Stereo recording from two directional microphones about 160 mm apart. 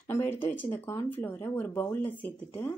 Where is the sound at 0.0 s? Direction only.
15° left (ahead or behind).